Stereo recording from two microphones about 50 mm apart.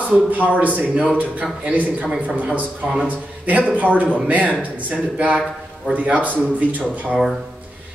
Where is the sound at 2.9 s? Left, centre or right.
Right.